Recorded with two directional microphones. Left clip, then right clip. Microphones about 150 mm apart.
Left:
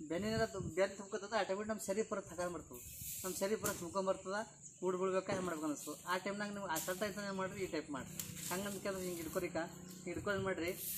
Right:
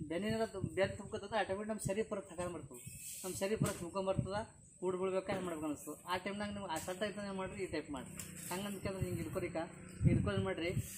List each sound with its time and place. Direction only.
0.1 s a man's voice: 20° right (ahead or behind)